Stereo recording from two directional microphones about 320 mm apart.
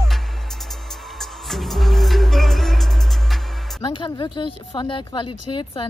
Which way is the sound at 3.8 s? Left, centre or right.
Centre.